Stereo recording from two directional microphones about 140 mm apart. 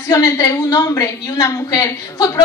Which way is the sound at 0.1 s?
25° left (ahead or behind).